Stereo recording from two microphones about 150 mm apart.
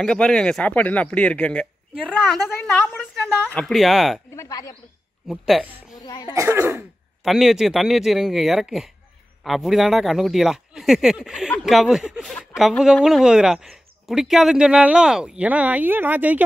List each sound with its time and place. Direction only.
0.0 s a man's voice: 5° left (ahead or behind)
3.4 s speech: 5° left (ahead or behind)
4.4 s speech: 25° left (ahead or behind)
5.3 s speech: centre (ahead or behind)
5.9 s speech: 25° left (ahead or behind)
6.3 s speech: 20° right (ahead or behind)
7.2 s speech: centre (ahead or behind)